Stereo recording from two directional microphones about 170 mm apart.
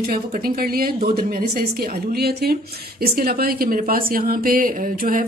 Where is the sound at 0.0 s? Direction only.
60° right (ahead or behind).